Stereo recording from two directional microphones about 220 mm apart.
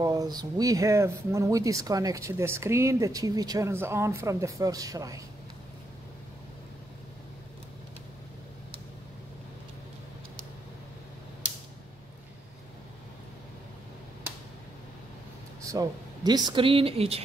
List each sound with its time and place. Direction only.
0.0 s speech: 15° right (ahead or behind)
15.6 s speech: 15° right (ahead or behind)